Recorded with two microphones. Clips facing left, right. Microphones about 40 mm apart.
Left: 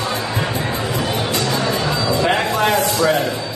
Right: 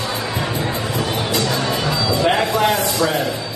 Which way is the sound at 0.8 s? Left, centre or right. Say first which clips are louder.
Left 1 dB; centre.